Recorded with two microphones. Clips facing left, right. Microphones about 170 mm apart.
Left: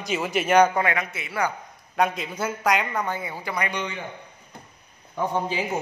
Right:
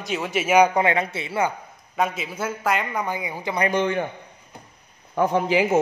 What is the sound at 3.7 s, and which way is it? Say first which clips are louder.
Speech: right 9 dB; 50° right (ahead or behind).